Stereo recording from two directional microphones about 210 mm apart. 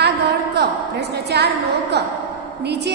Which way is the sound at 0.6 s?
50° right (ahead or behind).